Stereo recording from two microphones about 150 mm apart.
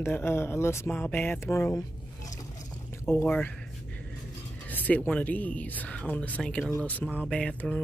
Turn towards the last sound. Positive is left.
turn(degrees=5)  # may be behind; listen again after turning